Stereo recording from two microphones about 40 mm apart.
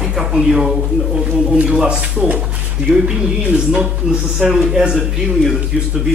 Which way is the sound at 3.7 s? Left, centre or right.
Centre.